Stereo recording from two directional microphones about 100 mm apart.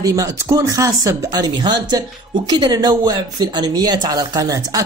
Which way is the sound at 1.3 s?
45° right (ahead or behind).